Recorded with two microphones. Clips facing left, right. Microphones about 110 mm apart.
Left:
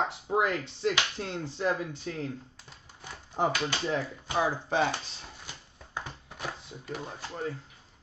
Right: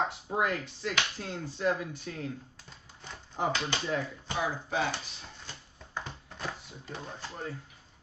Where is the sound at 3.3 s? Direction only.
25° left (ahead or behind).